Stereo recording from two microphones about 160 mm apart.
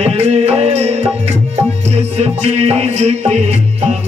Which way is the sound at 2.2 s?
40° right (ahead or behind).